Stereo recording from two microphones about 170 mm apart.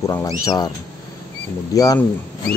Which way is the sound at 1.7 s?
20° left (ahead or behind).